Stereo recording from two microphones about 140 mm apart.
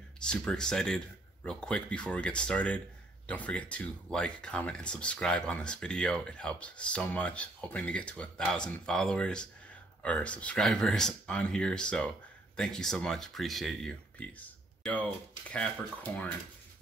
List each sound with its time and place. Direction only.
0.2 s speech: 5° left (ahead or behind)
16.1 s speech: 15° left (ahead or behind)